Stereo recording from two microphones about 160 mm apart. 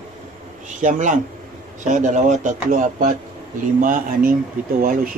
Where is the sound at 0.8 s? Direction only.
50° right (ahead or behind).